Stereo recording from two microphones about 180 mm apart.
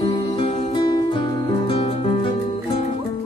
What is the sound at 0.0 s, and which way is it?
Music, 30° left (ahead or behind).